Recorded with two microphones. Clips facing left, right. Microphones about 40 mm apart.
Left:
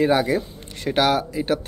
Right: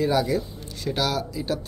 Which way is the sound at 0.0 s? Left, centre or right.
Left.